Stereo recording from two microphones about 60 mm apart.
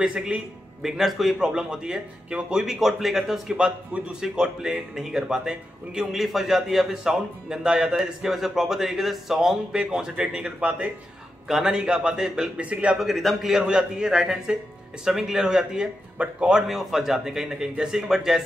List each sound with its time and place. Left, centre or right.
0.0 s a man's voice: centre
12.9 s a man's voice: centre